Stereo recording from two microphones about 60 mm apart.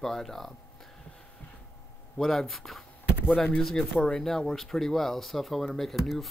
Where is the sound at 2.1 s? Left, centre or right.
Centre.